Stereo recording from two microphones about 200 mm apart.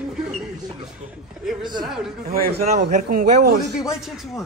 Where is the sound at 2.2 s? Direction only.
50° right (ahead or behind).